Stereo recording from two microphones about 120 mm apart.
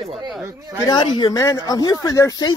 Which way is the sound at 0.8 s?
35° left (ahead or behind).